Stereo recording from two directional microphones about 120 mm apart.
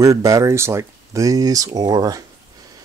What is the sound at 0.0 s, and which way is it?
Speech, 25° right (ahead or behind).